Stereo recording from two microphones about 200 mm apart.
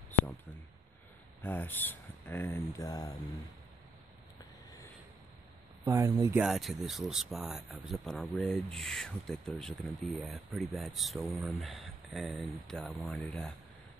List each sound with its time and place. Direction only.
0.1 s a sound: 10° left (ahead or behind)
1.4 s speech: 10° left (ahead or behind)
5.9 s speech: 15° right (ahead or behind)
6.4 s speech: centre (ahead or behind)